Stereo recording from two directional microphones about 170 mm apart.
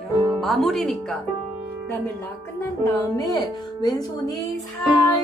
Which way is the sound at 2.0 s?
15° left (ahead or behind).